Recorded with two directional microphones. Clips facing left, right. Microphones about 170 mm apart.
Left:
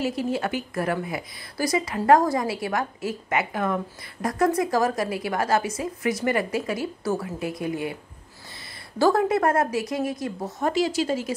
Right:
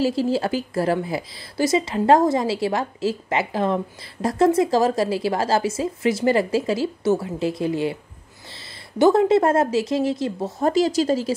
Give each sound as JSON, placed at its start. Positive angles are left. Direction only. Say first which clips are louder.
{"t": 0.0, "sound": "speech", "louder": "right 5 dB", "side_deg": -30}